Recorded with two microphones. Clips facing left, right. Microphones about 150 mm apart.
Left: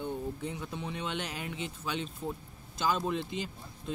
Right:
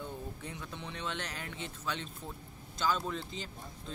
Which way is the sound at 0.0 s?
15° left (ahead or behind).